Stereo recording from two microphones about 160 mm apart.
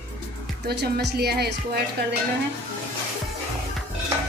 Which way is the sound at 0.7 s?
90° right.